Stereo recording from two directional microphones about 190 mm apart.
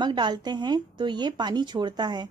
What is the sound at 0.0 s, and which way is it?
Speech, 25° right (ahead or behind).